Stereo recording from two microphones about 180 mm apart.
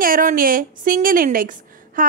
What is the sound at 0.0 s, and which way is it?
A woman's voice, 50° right (ahead or behind).